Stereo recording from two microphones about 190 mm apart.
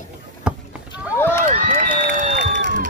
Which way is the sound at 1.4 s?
45° right (ahead or behind).